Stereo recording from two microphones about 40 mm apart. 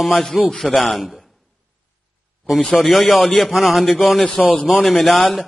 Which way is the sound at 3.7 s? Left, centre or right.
Centre.